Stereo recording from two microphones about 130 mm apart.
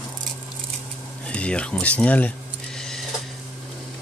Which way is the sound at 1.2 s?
10° left (ahead or behind).